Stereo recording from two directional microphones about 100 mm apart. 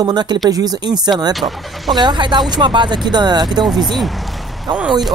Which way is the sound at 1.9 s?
45° right (ahead or behind).